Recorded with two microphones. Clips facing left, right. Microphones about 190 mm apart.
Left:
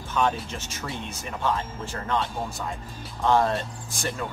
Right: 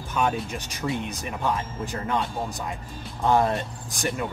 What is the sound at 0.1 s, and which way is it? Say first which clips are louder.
Speech: even; 15° right (ahead or behind).